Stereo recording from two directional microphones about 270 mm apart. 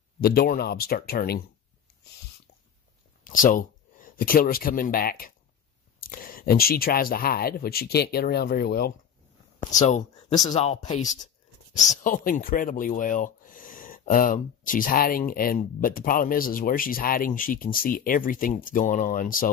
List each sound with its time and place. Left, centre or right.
0.2 s speech: left
3.3 s speech: left